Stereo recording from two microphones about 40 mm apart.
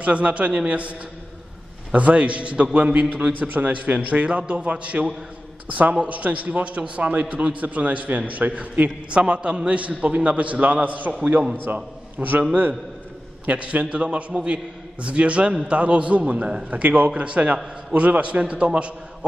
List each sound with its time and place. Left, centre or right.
0.0 s a man's voice: right
2.0 s a man's voice: right
9.1 s a man's voice: right
9.8 s a man's voice: right
11.5 s a man's voice: right
13.5 s a man's voice: right
14.0 s a man's voice: right
16.7 s a man's voice: right